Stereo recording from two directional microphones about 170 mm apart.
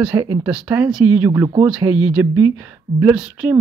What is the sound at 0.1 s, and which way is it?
Speech, 20° right (ahead or behind).